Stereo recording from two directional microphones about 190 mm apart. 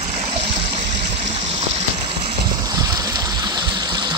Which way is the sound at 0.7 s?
30° right (ahead or behind).